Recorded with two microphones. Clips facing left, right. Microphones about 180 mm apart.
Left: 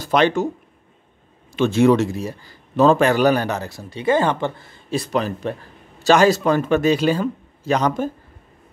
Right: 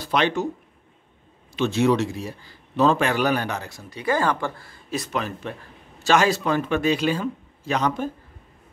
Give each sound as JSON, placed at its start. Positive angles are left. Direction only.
{"t": 0.0, "sound": "speech", "side_deg": 45}
{"t": 1.5, "sound": "a man's voice", "side_deg": 50}